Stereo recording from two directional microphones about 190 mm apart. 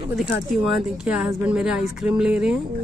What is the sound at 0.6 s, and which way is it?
Speech, centre (ahead or behind).